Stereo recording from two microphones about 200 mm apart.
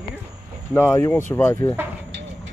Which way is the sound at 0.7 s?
15° left (ahead or behind).